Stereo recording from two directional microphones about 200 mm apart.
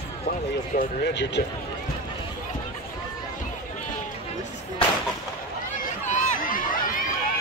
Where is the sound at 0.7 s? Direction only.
55° left (ahead or behind).